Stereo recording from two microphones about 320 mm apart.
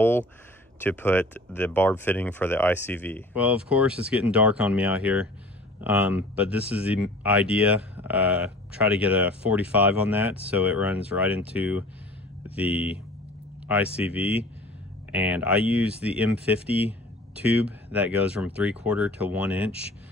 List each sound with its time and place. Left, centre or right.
0.7 s speech: centre
12.6 s speech: centre
13.9 s speech: centre